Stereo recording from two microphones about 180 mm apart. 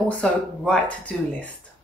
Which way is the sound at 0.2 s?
5° left (ahead or behind).